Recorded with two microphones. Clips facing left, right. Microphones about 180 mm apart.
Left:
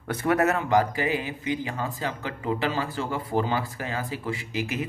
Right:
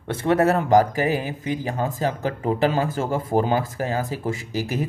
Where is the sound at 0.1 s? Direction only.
25° right (ahead or behind).